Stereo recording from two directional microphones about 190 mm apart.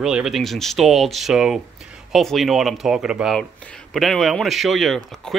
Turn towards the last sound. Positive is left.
turn(degrees=5)  # may be behind; listen again after turning